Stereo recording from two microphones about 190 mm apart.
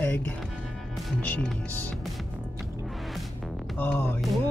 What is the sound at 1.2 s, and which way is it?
Speech, 5° left (ahead or behind).